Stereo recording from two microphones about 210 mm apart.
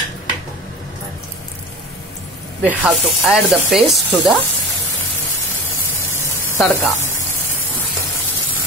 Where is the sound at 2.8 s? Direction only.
Centre (ahead or behind).